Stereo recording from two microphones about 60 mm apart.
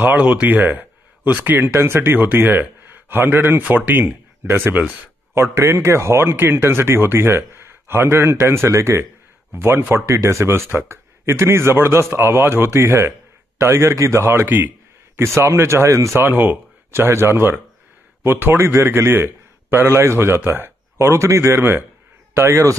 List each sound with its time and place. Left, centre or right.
0.0 s speech: right
5.3 s speech: right
9.5 s speech: right
10.0 s speech: right
14.2 s speech: right
15.1 s speech: right
16.2 s speech: right
18.6 s a man's voice: right